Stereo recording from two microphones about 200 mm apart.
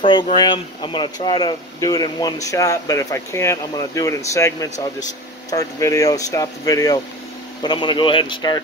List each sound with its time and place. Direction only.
0.0 s speech: 25° left (ahead or behind)